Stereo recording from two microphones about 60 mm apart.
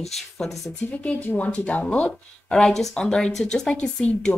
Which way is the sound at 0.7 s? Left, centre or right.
Left.